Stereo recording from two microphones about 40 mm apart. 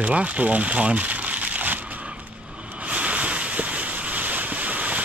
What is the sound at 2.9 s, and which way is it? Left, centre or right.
Ocean, right.